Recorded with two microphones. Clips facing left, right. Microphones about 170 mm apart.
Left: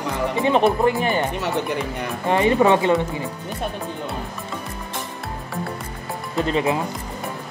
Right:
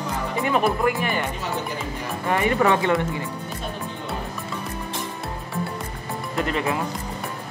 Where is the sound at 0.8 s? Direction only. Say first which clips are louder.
Left 4 dB; 30° left (ahead or behind).